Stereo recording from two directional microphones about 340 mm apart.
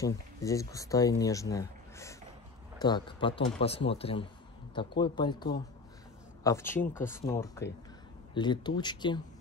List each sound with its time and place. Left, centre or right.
0.0 s speech: centre